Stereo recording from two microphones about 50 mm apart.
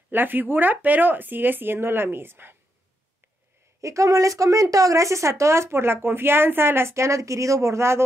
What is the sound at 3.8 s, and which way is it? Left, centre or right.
Speech, right.